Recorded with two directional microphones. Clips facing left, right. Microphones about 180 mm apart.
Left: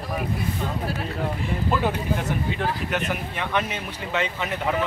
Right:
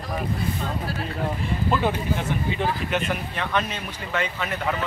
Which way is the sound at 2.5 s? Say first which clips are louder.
Right 1 dB; centre (ahead or behind).